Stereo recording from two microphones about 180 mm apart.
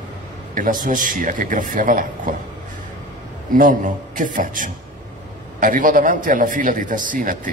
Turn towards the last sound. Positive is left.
turn(degrees=-50)  # may be behind; listen again after turning